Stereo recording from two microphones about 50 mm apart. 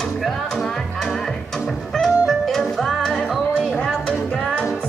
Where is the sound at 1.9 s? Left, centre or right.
Centre.